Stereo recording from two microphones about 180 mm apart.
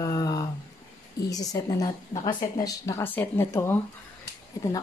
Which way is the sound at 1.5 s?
20° left (ahead or behind).